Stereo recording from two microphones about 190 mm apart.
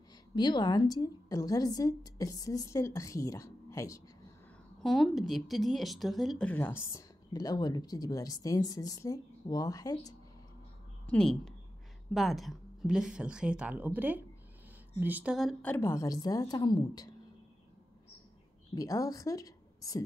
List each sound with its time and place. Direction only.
0.4 s a woman's voice: 20° left (ahead or behind)
4.8 s speech: centre (ahead or behind); by 10.1 s 20° left (ahead or behind)
11.1 s speech: 5° left (ahead or behind)
15.6 s a woman's voice: 10° left (ahead or behind)
18.8 s a woman's voice: 20° left (ahead or behind)